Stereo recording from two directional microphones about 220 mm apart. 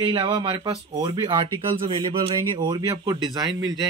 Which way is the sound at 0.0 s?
20° right (ahead or behind).